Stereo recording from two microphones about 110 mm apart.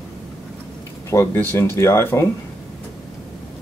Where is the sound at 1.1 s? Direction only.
20° left (ahead or behind).